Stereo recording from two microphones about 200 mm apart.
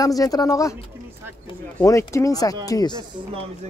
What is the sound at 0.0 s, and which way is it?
Speech, 20° left (ahead or behind).